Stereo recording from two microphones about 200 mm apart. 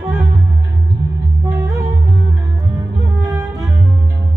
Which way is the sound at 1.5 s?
15° right (ahead or behind).